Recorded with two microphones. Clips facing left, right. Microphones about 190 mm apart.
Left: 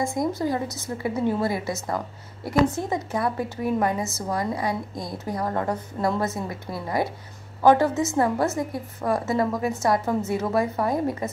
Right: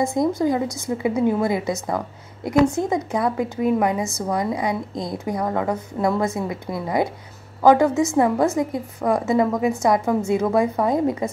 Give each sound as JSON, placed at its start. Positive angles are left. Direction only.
{"t": 0.0, "sound": "a woman's voice", "side_deg": -20}